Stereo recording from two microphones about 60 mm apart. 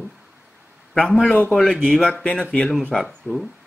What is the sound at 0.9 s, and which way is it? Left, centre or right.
Speech, centre.